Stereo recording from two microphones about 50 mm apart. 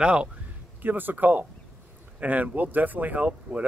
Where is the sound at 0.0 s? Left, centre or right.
Centre.